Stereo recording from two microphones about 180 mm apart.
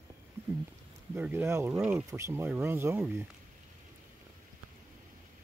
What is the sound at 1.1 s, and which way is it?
Speech, 10° right (ahead or behind).